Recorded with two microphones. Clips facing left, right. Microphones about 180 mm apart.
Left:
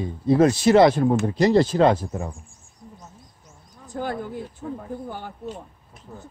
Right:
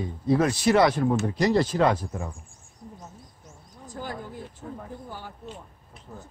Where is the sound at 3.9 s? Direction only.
60° left (ahead or behind).